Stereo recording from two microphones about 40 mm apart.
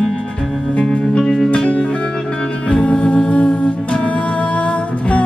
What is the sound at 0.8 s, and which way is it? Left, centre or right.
Music, left.